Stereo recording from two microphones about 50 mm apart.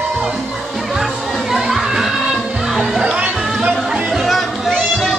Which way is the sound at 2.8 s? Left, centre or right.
Centre.